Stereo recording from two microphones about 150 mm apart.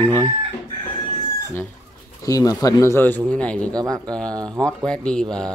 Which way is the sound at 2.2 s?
25° left (ahead or behind).